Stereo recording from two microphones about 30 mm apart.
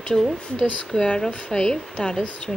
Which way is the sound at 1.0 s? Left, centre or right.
Left.